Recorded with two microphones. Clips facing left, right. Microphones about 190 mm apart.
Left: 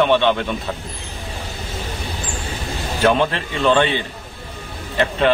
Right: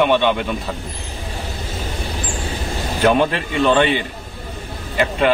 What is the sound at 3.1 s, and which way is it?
Speech, 15° right (ahead or behind).